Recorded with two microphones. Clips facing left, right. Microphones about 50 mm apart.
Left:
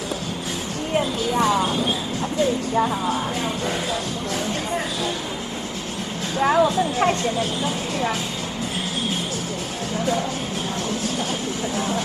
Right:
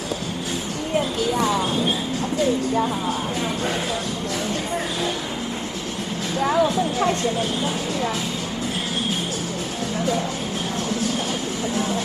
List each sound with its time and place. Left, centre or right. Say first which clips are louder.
1.3 s a sound: left 3 dB; left
6.4 s speech: left 2 dB; left
11.7 s vehicle: right 1 dB; left